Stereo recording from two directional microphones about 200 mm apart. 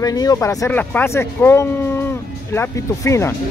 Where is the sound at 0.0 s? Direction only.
20° left (ahead or behind).